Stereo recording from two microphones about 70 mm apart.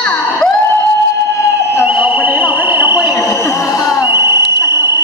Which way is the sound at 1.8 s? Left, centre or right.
Right.